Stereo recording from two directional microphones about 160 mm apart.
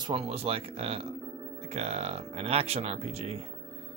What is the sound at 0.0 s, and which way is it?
Speech, 35° right (ahead or behind).